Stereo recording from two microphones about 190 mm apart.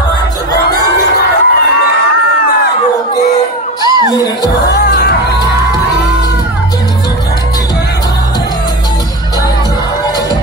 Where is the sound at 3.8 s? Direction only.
20° right (ahead or behind).